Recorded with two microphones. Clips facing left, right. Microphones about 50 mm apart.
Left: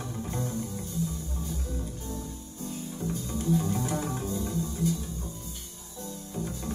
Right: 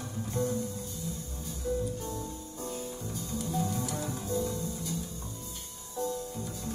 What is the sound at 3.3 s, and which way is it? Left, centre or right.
Music, left.